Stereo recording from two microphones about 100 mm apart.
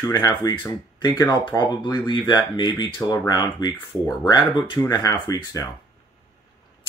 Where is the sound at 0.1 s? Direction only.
45° left (ahead or behind).